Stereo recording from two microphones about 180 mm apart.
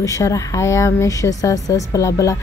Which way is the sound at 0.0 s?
20° left (ahead or behind).